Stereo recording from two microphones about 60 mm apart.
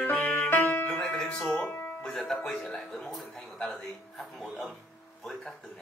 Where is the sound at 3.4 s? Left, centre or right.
Centre.